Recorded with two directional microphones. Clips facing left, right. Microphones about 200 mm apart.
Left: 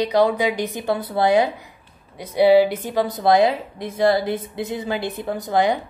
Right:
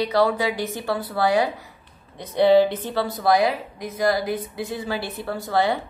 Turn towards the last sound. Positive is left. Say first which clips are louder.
# left 2 dB
turn(degrees=15)  # may be behind; listen again after turning